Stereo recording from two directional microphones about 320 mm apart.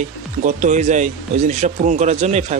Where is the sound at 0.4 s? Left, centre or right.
Right.